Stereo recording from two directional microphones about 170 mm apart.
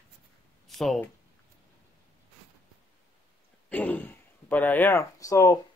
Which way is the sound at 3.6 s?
10° left (ahead or behind).